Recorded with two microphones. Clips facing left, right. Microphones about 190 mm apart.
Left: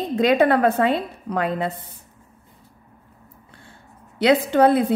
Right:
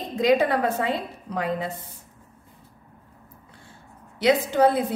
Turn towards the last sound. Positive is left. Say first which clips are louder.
# left 4 dB
turn(degrees=65)  # may be behind; listen again after turning